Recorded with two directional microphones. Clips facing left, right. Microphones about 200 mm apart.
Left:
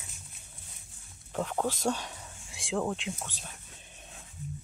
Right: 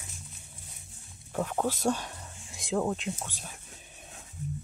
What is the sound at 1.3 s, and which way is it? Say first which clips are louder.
Speech: right 1 dB; 5° right (ahead or behind).